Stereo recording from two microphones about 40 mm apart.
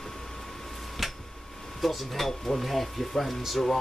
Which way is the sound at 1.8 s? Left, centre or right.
Centre.